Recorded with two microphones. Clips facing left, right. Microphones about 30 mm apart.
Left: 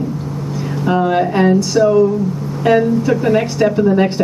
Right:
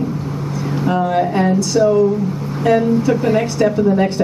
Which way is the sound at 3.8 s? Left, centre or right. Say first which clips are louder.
Left 3 dB; centre.